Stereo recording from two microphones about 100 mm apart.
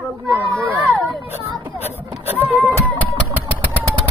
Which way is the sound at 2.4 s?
25° right (ahead or behind).